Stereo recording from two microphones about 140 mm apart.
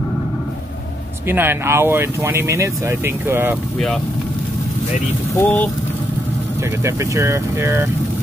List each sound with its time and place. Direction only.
1.2 s speech: 15° right (ahead or behind)
5.3 s speech: 15° left (ahead or behind)
6.8 s speech: 20° right (ahead or behind)